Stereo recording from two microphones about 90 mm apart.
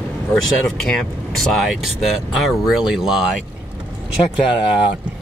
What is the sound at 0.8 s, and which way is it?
Speech, 5° left (ahead or behind).